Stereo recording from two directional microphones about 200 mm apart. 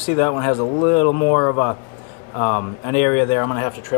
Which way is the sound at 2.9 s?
10° left (ahead or behind).